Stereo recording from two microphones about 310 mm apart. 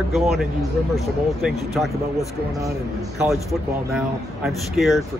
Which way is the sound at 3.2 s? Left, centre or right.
Centre.